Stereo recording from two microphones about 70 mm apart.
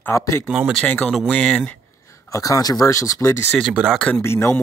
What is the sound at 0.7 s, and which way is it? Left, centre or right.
Speech, centre.